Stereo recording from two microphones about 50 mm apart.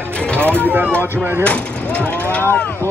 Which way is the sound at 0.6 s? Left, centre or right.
Right.